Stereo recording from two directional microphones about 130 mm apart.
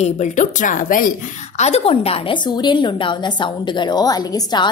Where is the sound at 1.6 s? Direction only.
55° left (ahead or behind).